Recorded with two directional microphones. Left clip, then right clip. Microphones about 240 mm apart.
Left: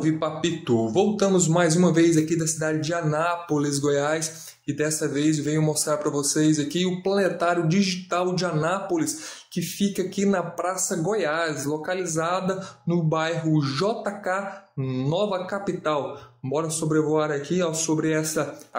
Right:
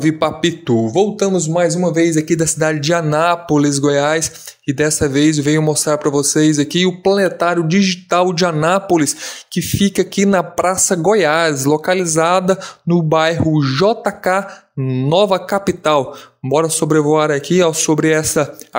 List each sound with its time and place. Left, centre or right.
0.0 s a man's voice: right